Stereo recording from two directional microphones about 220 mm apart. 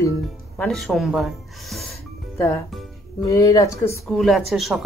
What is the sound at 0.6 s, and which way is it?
Speech, centre (ahead or behind).